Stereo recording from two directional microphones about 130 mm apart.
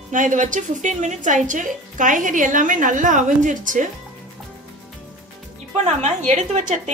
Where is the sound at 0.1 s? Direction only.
80° right.